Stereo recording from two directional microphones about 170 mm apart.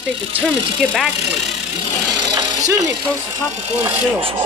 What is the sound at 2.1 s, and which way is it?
Jackhammer, 20° right (ahead or behind).